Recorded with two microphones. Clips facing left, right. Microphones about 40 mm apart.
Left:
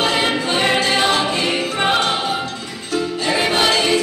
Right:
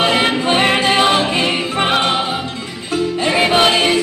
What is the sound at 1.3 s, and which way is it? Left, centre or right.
Music, right.